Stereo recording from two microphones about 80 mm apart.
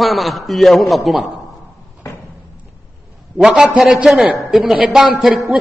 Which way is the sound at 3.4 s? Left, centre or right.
Centre.